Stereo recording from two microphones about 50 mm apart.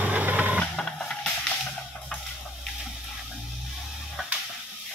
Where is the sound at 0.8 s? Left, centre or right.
Centre.